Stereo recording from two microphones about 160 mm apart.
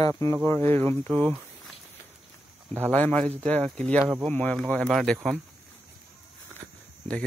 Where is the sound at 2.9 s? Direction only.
10° left (ahead or behind).